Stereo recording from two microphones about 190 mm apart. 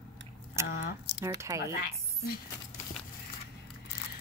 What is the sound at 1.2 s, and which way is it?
Speech, 15° right (ahead or behind).